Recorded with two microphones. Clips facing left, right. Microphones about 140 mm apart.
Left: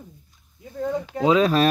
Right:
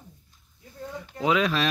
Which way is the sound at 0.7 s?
90° left.